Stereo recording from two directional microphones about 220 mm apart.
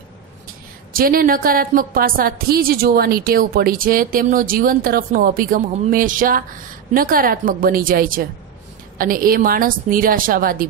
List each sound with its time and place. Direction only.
0.9 s a woman's voice: 40° right (ahead or behind)